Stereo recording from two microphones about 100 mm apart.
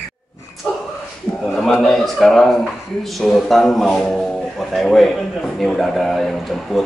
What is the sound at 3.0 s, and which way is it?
A man's voice, 5° left (ahead or behind).